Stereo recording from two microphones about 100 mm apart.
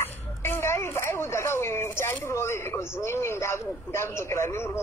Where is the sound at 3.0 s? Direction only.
25° left (ahead or behind).